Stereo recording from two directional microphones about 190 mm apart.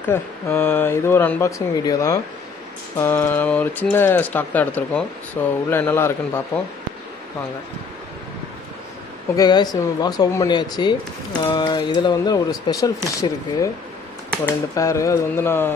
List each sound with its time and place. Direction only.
0.1 s speech: 10° left (ahead or behind)
9.4 s speech: 20° left (ahead or behind)
14.8 s speech: 15° left (ahead or behind)